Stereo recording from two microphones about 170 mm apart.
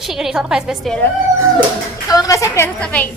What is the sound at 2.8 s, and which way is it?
Speech, 5° left (ahead or behind).